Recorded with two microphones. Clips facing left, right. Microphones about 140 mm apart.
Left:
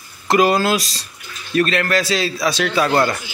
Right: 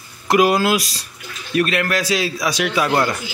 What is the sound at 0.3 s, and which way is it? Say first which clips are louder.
A man's voice: even; 10° right (ahead or behind).